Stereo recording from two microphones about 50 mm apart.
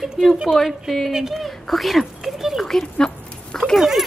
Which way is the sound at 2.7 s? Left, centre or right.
Centre.